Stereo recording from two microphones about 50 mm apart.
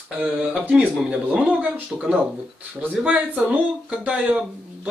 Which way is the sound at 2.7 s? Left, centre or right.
Right.